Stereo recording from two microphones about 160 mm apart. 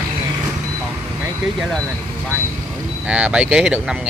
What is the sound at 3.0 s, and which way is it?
Speech, 5° right (ahead or behind).